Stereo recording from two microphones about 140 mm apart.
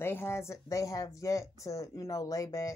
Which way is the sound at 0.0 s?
15° left (ahead or behind).